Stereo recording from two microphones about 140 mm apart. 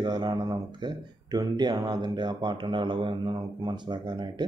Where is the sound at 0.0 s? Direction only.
30° right (ahead or behind).